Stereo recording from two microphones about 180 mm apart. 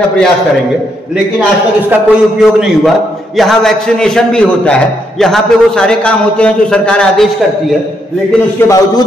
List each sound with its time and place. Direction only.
1.9 s a man's voice: 5° right (ahead or behind)
8.5 s a man's voice: 20° left (ahead or behind)